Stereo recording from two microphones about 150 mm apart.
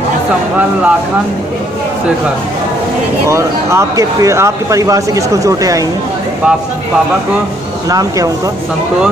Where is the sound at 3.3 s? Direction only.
20° right (ahead or behind).